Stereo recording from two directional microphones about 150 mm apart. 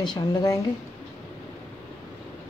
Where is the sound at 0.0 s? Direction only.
30° left (ahead or behind).